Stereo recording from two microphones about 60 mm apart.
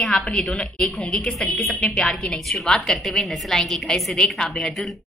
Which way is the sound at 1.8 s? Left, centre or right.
Centre.